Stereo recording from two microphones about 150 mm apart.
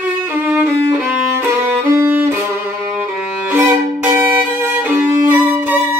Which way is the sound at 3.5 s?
15° right (ahead or behind).